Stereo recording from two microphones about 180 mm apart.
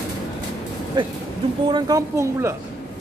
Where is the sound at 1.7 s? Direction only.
20° right (ahead or behind).